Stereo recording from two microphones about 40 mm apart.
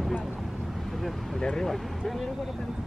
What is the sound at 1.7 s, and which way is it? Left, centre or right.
Speech, centre.